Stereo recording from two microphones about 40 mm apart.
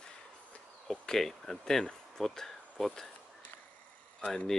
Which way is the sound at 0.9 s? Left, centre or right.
Centre.